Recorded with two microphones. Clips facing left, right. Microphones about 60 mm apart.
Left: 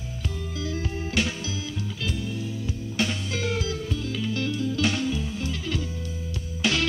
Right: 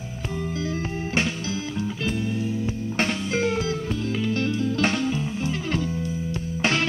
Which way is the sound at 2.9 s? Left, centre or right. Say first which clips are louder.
Right 3 dB; right.